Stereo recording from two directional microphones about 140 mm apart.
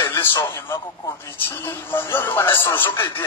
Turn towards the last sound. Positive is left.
turn(degrees=15)  # may be behind; listen again after turning